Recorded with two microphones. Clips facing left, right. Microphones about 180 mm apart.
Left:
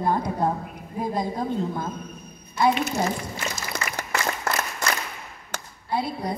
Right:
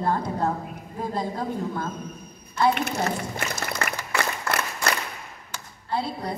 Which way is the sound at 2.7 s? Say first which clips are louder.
Left 1 dB; 60° right (ahead or behind).